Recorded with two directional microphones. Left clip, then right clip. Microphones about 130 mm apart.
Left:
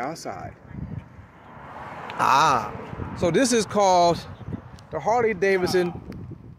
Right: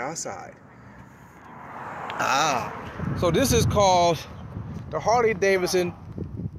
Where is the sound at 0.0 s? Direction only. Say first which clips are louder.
Left 1 dB; 25° left (ahead or behind).